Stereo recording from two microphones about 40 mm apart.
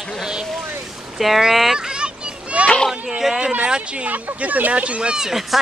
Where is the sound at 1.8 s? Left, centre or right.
Right.